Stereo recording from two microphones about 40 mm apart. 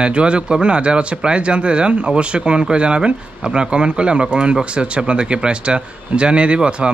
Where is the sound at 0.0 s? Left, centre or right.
Right.